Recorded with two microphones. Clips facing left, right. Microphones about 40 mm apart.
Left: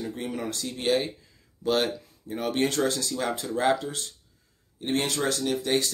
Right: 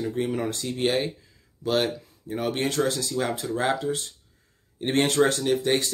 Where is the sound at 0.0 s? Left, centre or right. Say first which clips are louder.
Right 5 dB; centre.